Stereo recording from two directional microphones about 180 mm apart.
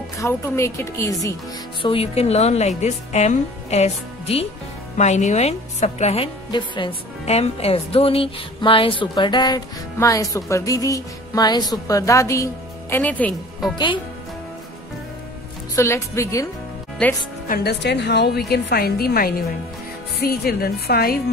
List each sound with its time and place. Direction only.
0.2 s a woman's voice: 15° left (ahead or behind)
1.8 s a woman's voice: 30° left (ahead or behind); by 13.3 s 10° left (ahead or behind)
15.7 s a woman's voice: 15° left (ahead or behind)
17.5 s a woman's voice: 65° left (ahead or behind)